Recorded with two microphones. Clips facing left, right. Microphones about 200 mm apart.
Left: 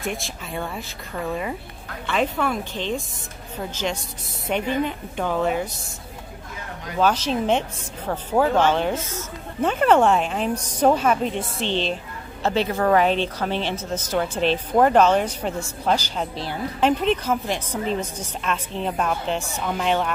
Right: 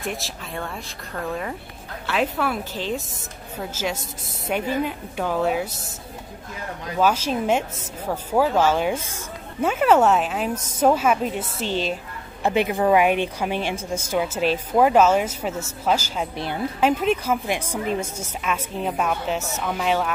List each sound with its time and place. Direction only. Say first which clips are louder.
0.0 s speech: left 1 dB; centre (ahead or behind)
7.0 s speech: even; 10° right (ahead or behind)